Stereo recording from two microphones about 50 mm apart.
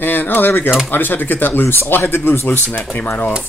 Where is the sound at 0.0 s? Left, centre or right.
Left.